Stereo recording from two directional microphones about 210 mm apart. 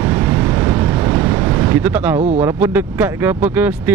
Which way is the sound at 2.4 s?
10° right (ahead or behind).